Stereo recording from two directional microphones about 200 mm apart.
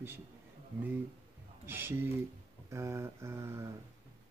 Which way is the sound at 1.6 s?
10° right (ahead or behind).